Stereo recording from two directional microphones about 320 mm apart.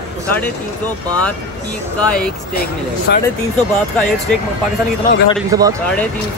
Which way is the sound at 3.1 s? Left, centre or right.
Left.